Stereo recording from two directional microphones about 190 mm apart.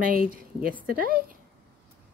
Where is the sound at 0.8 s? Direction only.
45° right (ahead or behind).